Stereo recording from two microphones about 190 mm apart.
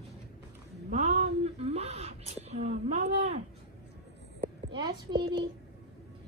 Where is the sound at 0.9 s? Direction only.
35° right (ahead or behind).